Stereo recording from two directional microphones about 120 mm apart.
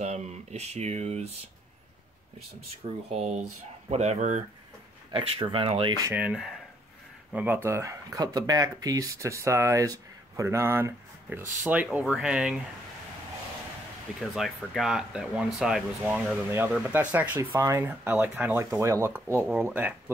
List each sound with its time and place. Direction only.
0.0 s speech: 65° right (ahead or behind)
2.8 s speech: 55° right (ahead or behind)
3.9 s speech: 70° right (ahead or behind)
5.1 s speech: 50° right (ahead or behind)
6.1 s speech: 10° right (ahead or behind)
14.3 s speech: centre (ahead or behind)
16.4 s speech: 20° right (ahead or behind)
17.4 s speech: 25° right (ahead or behind)